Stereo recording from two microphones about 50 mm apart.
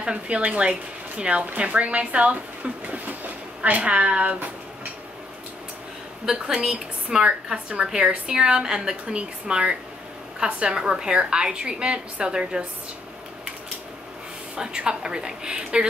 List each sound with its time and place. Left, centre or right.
0.0 s a woman's voice: right
6.2 s a woman's voice: centre
14.5 s a woman's voice: centre